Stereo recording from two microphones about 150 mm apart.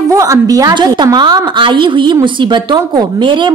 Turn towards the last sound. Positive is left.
turn(degrees=-30)  # may be behind; listen again after turning